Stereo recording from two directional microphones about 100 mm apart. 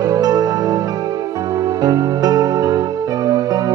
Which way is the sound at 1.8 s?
40° right (ahead or behind).